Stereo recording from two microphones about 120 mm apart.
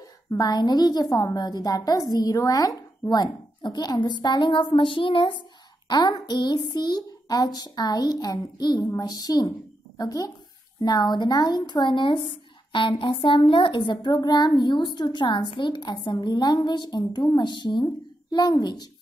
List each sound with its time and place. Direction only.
0.0 s a woman's voice: 30° left (ahead or behind)